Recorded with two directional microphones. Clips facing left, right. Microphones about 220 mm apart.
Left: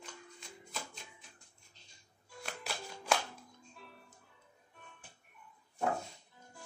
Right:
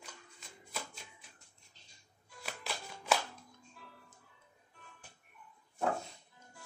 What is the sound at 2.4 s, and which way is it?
Music, 5° right (ahead or behind).